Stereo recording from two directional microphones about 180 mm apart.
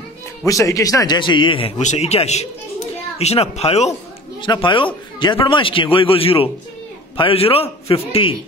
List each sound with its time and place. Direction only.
0.5 s a man's voice: 20° left (ahead or behind)